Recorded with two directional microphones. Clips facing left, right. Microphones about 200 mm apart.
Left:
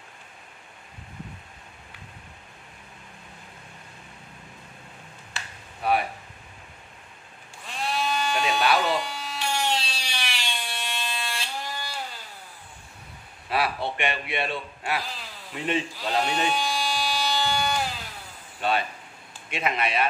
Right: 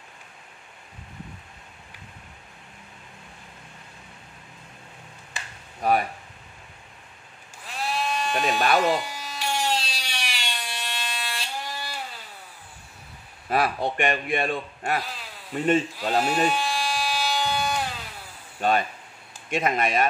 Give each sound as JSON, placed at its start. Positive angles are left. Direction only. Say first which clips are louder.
{"t": 5.8, "sound": "a sound", "louder": "right 2 dB", "side_deg": -40}
{"t": 7.6, "sound": "sheep", "louder": "even", "side_deg": 0}
{"t": 8.5, "sound": "electric shaver", "louder": "right 2 dB", "side_deg": -45}
{"t": 8.9, "sound": "a sound", "louder": "even", "side_deg": 0}
{"t": 13.5, "sound": "a man's voice", "louder": "right 3 dB", "side_deg": -45}
{"t": 16.0, "sound": "sheep", "louder": "right 3 dB", "side_deg": -5}
{"t": 18.6, "sound": "a man's voice", "louder": "right 3 dB", "side_deg": -45}